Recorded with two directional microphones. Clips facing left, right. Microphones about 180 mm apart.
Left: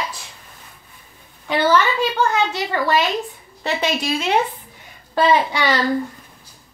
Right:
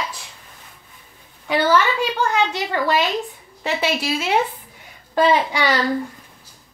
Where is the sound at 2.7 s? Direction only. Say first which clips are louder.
Left 1 dB; 15° right (ahead or behind).